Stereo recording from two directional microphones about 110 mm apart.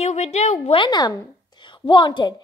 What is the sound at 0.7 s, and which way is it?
A woman's voice, 40° left (ahead or behind).